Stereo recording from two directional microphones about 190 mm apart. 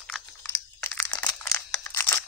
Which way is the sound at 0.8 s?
10° left (ahead or behind).